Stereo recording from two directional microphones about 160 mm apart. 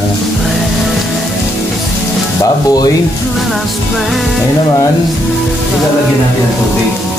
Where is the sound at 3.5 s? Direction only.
Centre (ahead or behind).